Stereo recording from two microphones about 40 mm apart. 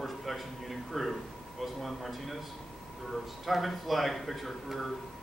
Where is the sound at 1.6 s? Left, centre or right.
Centre.